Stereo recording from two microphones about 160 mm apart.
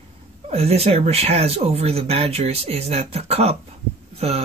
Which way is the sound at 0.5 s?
40° right (ahead or behind).